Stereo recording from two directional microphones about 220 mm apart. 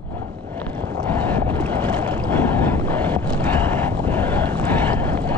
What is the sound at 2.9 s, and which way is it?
Wind noise, 10° left (ahead or behind).